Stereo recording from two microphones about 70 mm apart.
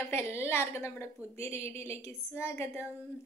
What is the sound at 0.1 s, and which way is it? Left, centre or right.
A woman's voice, left.